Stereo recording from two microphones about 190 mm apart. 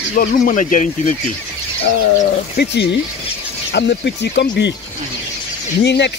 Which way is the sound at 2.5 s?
60° left (ahead or behind).